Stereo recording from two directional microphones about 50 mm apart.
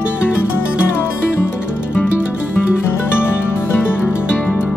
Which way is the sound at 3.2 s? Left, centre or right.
Left.